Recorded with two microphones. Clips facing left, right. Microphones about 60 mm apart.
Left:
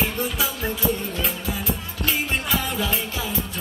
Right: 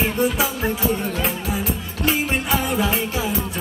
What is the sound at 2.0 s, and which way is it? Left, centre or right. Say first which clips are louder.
Music: right 4 dB; right.